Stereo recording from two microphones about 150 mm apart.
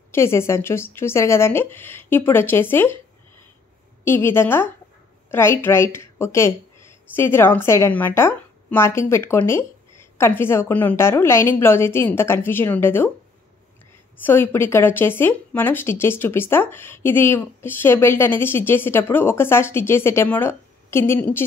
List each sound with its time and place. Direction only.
0.1 s speech: 15° left (ahead or behind)
4.0 s speech: 15° left (ahead or behind)
14.2 s speech: 15° left (ahead or behind)